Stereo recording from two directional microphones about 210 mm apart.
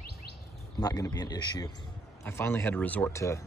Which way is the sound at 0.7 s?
20° left (ahead or behind).